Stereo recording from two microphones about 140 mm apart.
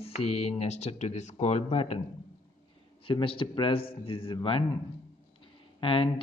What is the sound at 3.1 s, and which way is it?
Speech, 40° left (ahead or behind).